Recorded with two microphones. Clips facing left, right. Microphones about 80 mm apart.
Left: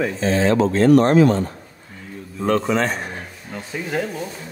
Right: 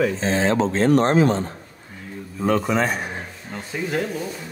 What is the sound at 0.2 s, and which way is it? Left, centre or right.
Speech, right.